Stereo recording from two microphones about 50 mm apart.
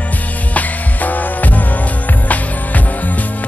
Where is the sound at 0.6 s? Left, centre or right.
Left.